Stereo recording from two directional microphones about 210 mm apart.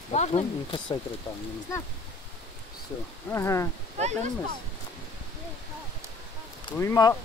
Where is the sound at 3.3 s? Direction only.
15° left (ahead or behind).